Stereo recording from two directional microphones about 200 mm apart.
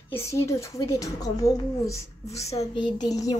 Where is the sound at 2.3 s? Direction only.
30° left (ahead or behind).